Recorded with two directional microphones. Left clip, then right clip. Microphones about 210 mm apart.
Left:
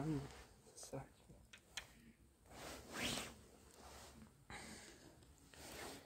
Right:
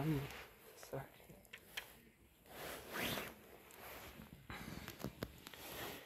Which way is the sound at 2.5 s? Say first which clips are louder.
Right 4 dB; 35° right (ahead or behind).